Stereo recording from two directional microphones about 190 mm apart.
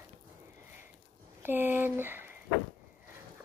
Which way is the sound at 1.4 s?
10° right (ahead or behind).